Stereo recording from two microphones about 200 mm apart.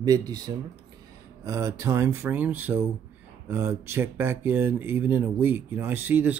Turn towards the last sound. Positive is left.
turn(degrees=-10)  # may be behind; listen again after turning